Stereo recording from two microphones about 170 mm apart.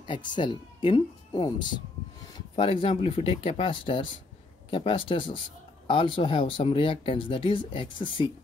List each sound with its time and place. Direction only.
0.0 s speech: 30° left (ahead or behind)